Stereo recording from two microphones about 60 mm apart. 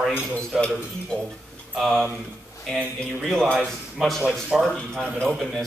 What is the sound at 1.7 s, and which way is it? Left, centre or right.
Speech, centre.